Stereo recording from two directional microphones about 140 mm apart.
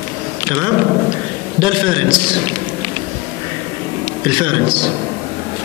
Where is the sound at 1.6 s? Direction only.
35° right (ahead or behind).